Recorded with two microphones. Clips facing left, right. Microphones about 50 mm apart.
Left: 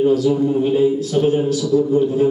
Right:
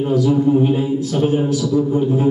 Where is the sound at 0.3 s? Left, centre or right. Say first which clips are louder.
Right 2 dB; centre.